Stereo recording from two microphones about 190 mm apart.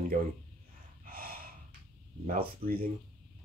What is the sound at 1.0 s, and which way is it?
Gasp, 50° right (ahead or behind).